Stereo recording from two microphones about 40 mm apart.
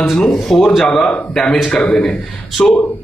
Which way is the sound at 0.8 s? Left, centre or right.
Left.